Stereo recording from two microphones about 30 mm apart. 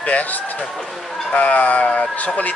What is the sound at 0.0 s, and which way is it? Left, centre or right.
Speech, left.